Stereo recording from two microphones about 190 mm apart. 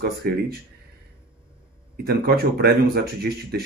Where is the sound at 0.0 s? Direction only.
55° right (ahead or behind).